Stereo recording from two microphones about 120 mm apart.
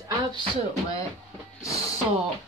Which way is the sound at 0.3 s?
45° right (ahead or behind).